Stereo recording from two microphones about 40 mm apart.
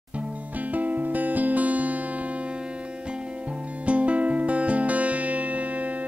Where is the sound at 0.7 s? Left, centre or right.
Right.